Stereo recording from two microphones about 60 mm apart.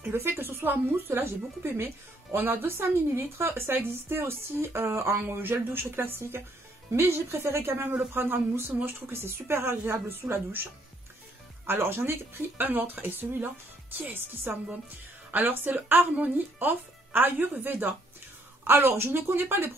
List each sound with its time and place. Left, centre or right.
0.0 s speech: right
7.9 s speech: right